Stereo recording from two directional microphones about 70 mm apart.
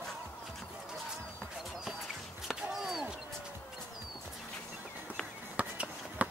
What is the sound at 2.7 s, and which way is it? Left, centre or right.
Basketball bounce, centre.